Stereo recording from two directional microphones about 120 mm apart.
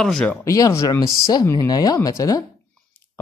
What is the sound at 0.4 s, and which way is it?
Speech, 25° left (ahead or behind).